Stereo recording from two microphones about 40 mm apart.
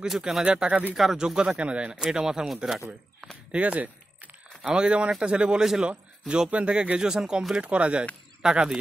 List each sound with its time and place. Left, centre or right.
0.0 s speech: centre
1.6 s speech: right
2.0 s speech: centre
3.5 s speech: right
4.6 s speech: right
5.6 s speech: centre
5.9 s a man's voice: right
7.0 s speech: centre
7.5 s speech: right
8.4 s speech: centre